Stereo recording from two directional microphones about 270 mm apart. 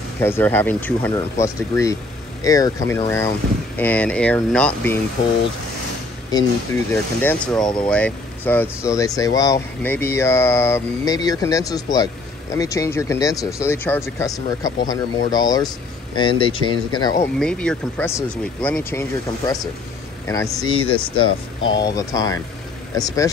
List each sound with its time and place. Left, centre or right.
0.2 s speech: centre
6.3 s speech: centre
17.4 s speech: centre